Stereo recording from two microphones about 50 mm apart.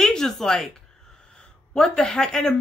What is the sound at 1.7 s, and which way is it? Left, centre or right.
Speech, centre.